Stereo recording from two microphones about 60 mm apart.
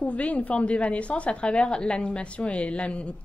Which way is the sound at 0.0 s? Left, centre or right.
Left.